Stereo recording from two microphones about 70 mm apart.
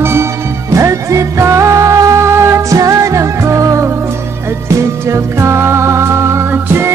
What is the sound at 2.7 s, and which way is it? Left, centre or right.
Music, right.